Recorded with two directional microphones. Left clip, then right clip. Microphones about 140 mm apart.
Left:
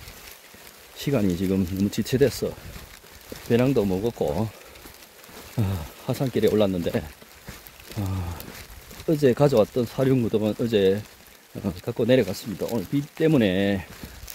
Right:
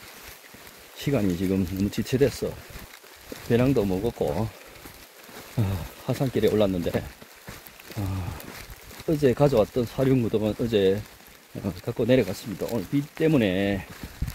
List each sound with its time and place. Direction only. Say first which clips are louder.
0.9 s speech: left 1 dB; 25° left (ahead or behind)
3.4 s speech: left 1 dB; 15° left (ahead or behind)
5.6 s pour: left 1 dB; 15° left (ahead or behind)
6.3 s speech: left 1 dB; 20° left (ahead or behind)
9.0 s speech: left 2 dB; 30° left (ahead or behind)